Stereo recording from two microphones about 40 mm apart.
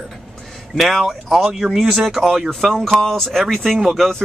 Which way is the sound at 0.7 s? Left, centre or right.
Centre.